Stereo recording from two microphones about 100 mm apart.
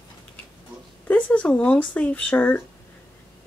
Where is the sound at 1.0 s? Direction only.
15° left (ahead or behind).